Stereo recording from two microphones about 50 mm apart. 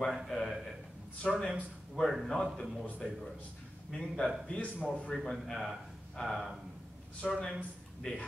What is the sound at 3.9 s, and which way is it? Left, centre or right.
Speech, centre.